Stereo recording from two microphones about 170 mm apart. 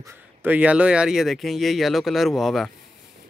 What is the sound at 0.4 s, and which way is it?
Speech, 10° right (ahead or behind).